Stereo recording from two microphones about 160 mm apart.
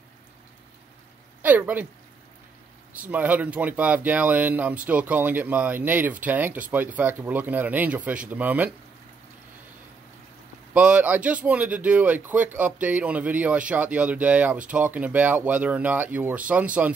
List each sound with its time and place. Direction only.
1.4 s a woman's voice: 10° right (ahead or behind)
2.9 s speech: 10° right (ahead or behind)
10.7 s speech: 10° right (ahead or behind)